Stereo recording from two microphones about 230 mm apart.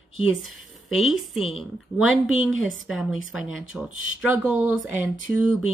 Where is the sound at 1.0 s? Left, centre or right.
Centre.